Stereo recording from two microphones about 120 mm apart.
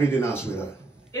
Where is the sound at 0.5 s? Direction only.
20° left (ahead or behind).